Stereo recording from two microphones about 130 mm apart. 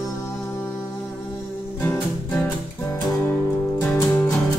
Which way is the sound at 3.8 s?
20° left (ahead or behind).